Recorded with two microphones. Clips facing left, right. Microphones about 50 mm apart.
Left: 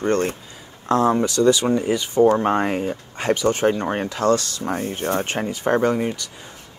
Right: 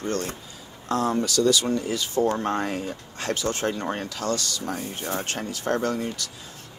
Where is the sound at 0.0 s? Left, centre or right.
Left.